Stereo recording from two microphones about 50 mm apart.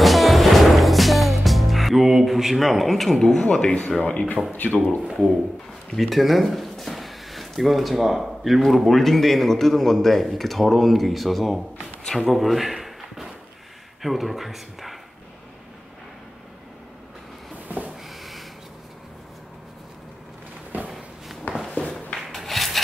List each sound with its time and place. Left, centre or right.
0.0 s music: centre
3.2 s speech: centre; by 4.7 s left
5.9 s speech: centre
12.2 s a sound: centre
14.0 s speech: centre
17.6 s a sound: right
20.7 s walk: right
21.8 s a sound: left
22.3 s rub: centre